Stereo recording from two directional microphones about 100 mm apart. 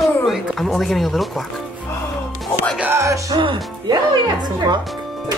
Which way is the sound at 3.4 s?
55° right (ahead or behind).